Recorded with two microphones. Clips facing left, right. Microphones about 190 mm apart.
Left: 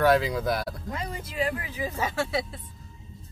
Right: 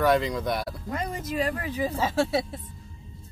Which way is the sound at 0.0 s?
Centre (ahead or behind).